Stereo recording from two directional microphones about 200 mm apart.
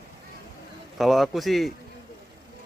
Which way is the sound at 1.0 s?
Centre (ahead or behind).